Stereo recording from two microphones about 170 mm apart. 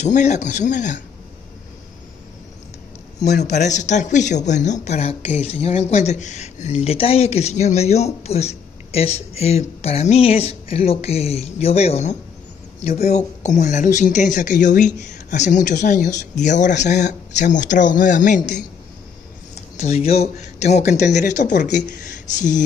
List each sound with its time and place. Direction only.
0.0 s speech: 45° left (ahead or behind)
3.6 s speech: 45° left (ahead or behind)
19.8 s speech: 40° left (ahead or behind)